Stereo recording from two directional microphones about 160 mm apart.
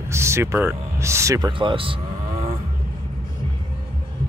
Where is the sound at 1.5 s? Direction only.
30° right (ahead or behind).